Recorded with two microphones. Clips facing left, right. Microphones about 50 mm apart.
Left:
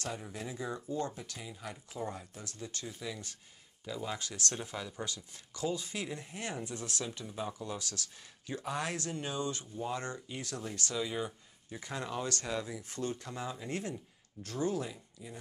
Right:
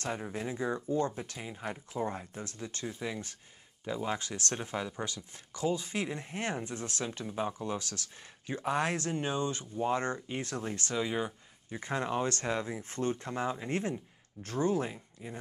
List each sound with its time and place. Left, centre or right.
0.0 s speech: right